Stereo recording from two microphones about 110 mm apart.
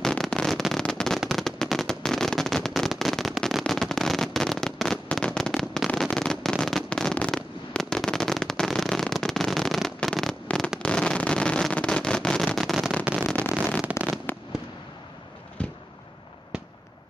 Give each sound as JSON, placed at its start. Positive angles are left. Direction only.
{"t": 0.0, "sound": "fireworks", "side_deg": 5}
{"t": 10.8, "sound": "a sound", "side_deg": 10}
{"t": 13.9, "sound": "fireworks", "side_deg": -10}
{"t": 14.3, "sound": "fireworks", "side_deg": 15}